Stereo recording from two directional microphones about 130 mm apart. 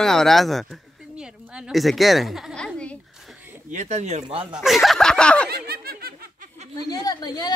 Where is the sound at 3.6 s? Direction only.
65° right (ahead or behind).